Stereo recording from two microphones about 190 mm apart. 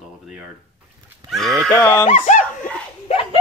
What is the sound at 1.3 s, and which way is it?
Speech, centre (ahead or behind).